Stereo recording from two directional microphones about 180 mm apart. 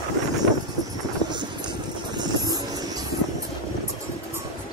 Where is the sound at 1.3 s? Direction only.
25° right (ahead or behind).